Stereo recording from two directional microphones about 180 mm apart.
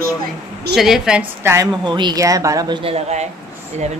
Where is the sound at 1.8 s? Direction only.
25° right (ahead or behind).